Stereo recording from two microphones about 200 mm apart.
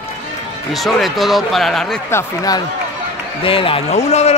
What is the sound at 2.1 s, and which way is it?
A man's voice, 20° left (ahead or behind).